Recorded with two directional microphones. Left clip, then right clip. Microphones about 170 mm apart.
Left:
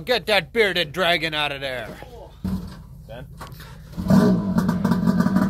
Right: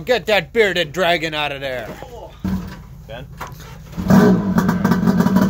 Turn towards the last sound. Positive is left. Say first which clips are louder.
# right 5 dB
turn(degrees=-30)  # may be behind; listen again after turning